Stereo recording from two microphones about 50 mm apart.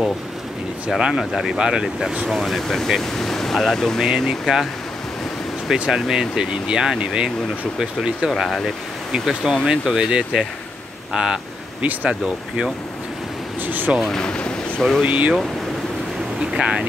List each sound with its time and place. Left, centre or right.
0.8 s speech: centre
1.6 s speech: centre
4.3 s speech: centre
5.7 s speech: centre
8.3 s speech: centre
11.8 s speech: right
13.6 s speech: right
14.1 s a sound: centre
15.0 s speech: right
16.5 s speech: centre